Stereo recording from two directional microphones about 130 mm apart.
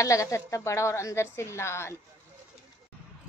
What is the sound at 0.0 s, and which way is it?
Child singing, 25° left (ahead or behind).